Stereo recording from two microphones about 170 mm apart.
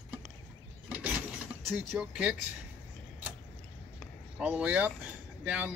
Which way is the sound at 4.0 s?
5° right (ahead or behind).